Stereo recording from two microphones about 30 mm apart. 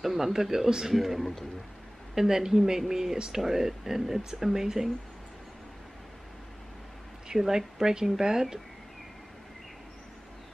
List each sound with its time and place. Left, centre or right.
0.0 s speech: centre
0.9 s speech: centre
2.1 s speech: centre
3.4 s speech: centre
7.3 s speech: centre